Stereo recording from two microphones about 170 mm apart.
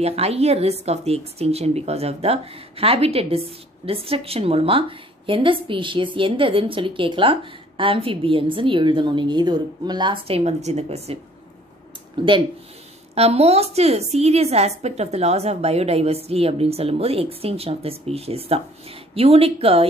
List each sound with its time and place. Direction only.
0.0 s speech: 35° right (ahead or behind)
12.2 s speech: 30° right (ahead or behind)